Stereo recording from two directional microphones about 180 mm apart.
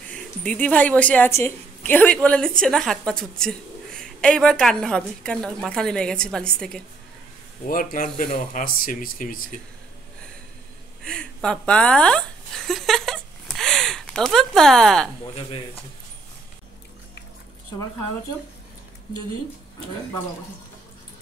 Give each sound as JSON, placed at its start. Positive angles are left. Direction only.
{"t": 0.1, "sound": "a woman's voice", "side_deg": 5}
{"t": 7.6, "sound": "speech", "side_deg": 50}
{"t": 11.1, "sound": "a sound", "side_deg": 5}